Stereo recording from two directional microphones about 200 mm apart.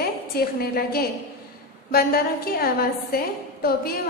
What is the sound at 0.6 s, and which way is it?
A woman's voice, 50° left (ahead or behind).